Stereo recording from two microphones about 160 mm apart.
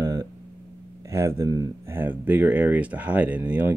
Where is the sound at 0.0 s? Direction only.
20° right (ahead or behind).